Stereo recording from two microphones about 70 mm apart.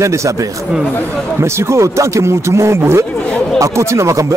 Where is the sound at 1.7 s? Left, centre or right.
Right.